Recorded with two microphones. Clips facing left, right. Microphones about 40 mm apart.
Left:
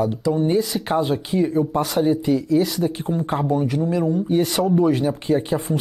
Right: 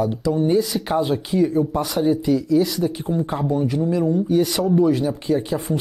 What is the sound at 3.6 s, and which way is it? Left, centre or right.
Speech, left.